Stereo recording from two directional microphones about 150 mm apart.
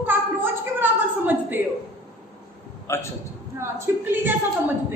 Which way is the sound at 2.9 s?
20° left (ahead or behind).